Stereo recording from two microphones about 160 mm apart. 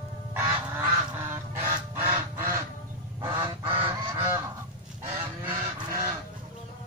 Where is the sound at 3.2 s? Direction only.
35° right (ahead or behind).